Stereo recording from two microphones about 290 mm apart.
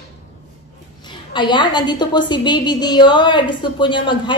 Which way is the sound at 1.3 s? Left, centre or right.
Centre.